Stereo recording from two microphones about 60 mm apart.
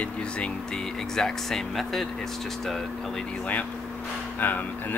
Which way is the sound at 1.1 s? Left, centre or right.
Centre.